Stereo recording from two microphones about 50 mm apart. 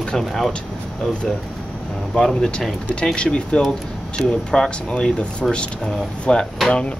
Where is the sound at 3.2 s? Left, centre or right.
Centre.